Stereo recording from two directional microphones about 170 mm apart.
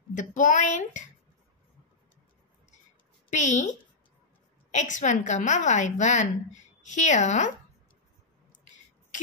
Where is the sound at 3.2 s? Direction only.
45° left (ahead or behind).